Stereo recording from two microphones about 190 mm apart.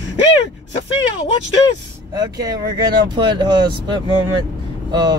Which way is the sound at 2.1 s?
20° right (ahead or behind).